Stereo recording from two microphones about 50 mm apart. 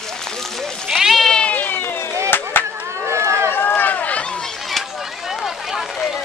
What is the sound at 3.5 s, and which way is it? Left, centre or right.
Run, left.